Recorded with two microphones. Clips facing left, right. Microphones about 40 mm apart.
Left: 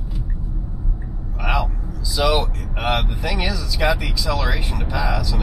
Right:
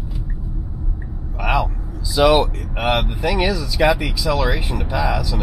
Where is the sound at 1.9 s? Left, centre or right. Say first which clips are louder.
Right 6 dB; centre.